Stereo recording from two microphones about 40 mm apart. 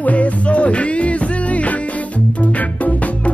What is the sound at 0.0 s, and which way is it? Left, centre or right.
Music, left.